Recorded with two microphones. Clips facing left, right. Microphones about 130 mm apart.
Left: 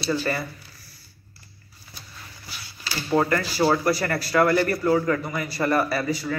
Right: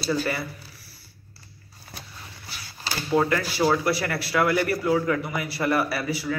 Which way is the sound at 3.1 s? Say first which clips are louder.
Left 1 dB; centre (ahead or behind).